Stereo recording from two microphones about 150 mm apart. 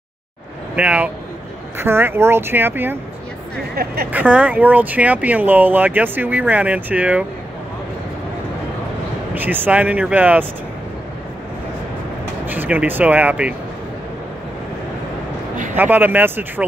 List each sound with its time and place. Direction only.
0.7 s speech: 10° right (ahead or behind)
3.7 s speech: 90° right
4.1 s speech: 10° right (ahead or behind)
9.3 s speech: 10° right (ahead or behind)
12.4 s speech: 10° right (ahead or behind)
15.7 s speech: 15° right (ahead or behind)